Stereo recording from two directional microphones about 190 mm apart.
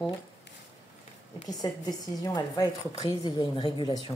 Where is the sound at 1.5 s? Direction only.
20° left (ahead or behind).